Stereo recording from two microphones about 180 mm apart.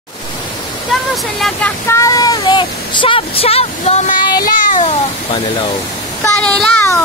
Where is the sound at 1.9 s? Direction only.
15° left (ahead or behind).